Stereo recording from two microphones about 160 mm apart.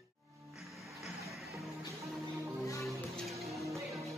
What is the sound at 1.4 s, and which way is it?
Music, 20° right (ahead or behind).